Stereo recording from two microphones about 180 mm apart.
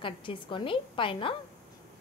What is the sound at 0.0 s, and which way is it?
A woman's voice, 30° left (ahead or behind).